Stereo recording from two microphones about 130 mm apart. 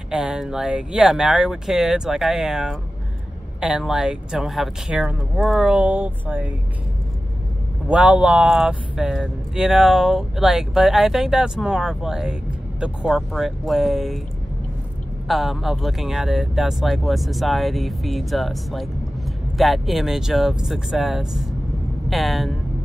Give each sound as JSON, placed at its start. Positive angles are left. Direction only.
{"t": 0.1, "sound": "speech", "side_deg": -5}
{"t": 7.9, "sound": "speech", "side_deg": -10}
{"t": 15.2, "sound": "speech", "side_deg": 0}